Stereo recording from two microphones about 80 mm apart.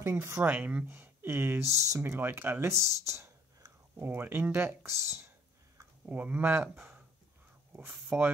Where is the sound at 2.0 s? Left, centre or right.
Right.